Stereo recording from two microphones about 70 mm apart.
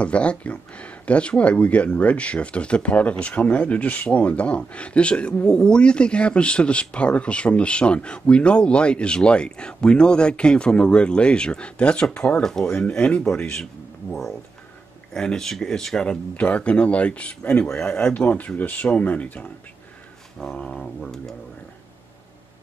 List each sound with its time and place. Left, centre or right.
0.0 s speech: centre
15.1 s speech: centre
18.0 s speech: centre
20.3 s speech: centre